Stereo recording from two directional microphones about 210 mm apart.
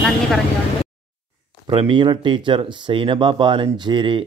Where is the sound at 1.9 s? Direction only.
25° right (ahead or behind).